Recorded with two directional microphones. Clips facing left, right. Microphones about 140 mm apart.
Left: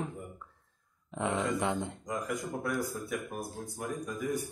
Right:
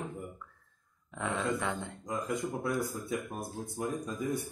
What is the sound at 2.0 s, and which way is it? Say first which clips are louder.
Speech: right 1 dB; 25° right (ahead or behind).